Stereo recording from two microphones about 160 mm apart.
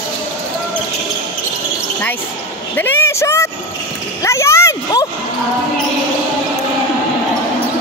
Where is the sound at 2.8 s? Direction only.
15° left (ahead or behind).